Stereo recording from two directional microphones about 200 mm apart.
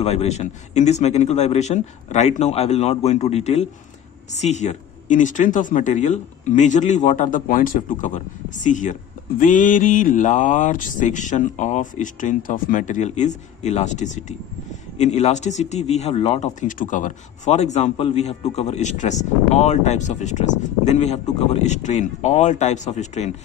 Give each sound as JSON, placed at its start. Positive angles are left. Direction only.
{"t": 0.0, "sound": "speech", "side_deg": 30}